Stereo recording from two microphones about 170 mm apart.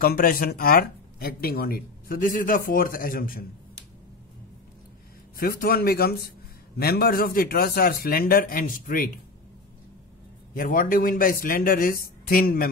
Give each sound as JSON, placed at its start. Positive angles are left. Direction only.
{"t": 0.0, "sound": "speech", "side_deg": 60}
{"t": 5.4, "sound": "speech", "side_deg": 60}
{"t": 10.5, "sound": "speech", "side_deg": 50}